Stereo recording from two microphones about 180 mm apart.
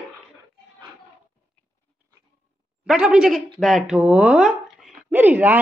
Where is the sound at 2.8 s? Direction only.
5° right (ahead or behind).